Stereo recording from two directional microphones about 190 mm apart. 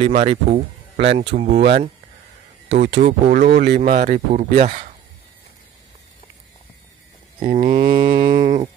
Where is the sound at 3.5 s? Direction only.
55° right (ahead or behind).